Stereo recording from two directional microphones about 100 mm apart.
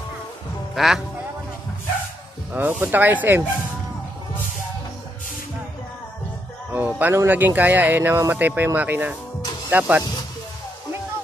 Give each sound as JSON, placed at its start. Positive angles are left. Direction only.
{"t": 0.7, "sound": "speech", "side_deg": -5}
{"t": 2.5, "sound": "speech", "side_deg": -20}
{"t": 6.7, "sound": "speech", "side_deg": -20}